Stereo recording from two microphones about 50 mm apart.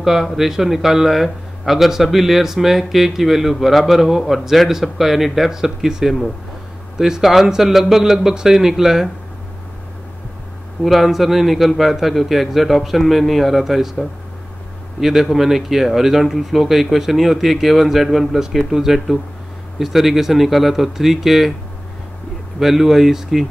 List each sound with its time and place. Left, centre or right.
0.0 s a man's voice: centre
10.8 s a man's voice: centre
22.6 s a man's voice: centre